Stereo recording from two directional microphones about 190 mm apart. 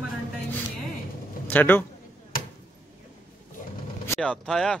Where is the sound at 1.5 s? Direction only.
10° left (ahead or behind).